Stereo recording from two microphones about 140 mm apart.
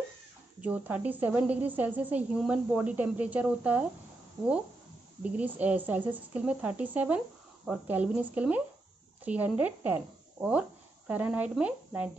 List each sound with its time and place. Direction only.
0.6 s a woman's voice: 10° right (ahead or behind)
4.4 s speech: 30° right (ahead or behind)
5.2 s a woman's voice: 10° right (ahead or behind)